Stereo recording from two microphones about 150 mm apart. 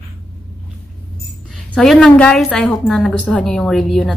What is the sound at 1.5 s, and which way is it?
A woman's voice, 5° left (ahead or behind).